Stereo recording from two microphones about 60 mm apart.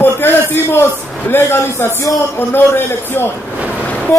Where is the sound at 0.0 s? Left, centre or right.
Left.